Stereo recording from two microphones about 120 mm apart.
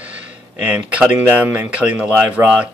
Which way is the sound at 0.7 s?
10° right (ahead or behind).